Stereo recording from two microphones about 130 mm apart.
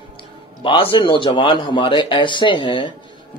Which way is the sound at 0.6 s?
40° left (ahead or behind).